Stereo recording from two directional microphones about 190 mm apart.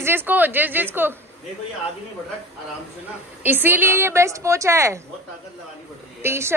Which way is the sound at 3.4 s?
10° right (ahead or behind).